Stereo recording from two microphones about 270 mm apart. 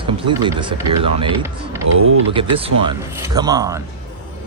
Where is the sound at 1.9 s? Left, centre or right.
Right.